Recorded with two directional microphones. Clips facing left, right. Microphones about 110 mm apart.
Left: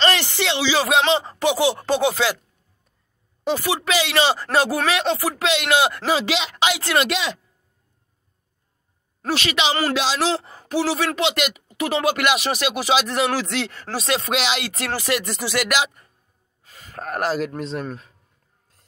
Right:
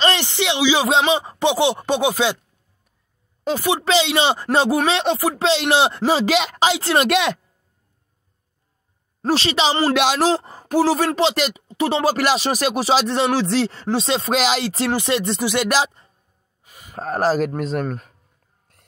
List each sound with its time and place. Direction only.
0.0 s speech: 20° right (ahead or behind)
3.5 s speech: 20° right (ahead or behind)
6.2 s speech: 45° right (ahead or behind)
6.7 s speech: 25° right (ahead or behind)
7.0 s speech: 55° right (ahead or behind)
9.2 s speech: 30° right (ahead or behind)
16.6 s gasp: 15° right (ahead or behind)
17.0 s speech: 30° right (ahead or behind); by 18.1 s 50° right (ahead or behind)